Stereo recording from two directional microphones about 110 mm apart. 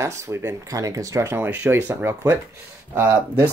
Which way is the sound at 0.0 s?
25° right (ahead or behind).